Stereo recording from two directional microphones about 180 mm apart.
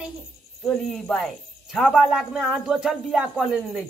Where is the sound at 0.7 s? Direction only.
5° left (ahead or behind).